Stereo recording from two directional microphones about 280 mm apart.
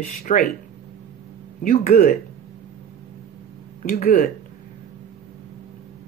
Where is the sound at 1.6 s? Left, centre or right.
Left.